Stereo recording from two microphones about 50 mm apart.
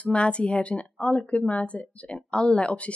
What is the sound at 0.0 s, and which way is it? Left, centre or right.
A woman's voice, left.